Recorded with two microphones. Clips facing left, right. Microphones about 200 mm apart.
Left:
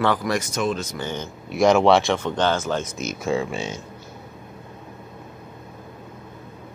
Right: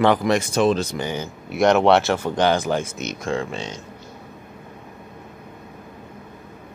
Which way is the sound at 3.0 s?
5° left (ahead or behind).